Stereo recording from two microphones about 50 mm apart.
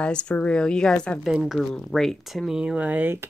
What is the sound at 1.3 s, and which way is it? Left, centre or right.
Speech, centre.